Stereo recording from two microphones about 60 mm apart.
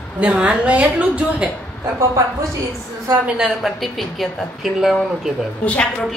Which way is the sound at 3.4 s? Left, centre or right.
Centre.